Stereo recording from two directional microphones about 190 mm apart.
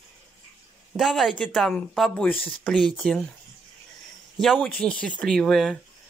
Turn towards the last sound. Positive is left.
turn(degrees=0)  # may be behind; listen again after turning